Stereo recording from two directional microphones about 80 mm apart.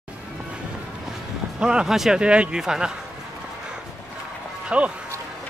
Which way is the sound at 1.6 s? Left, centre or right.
Centre.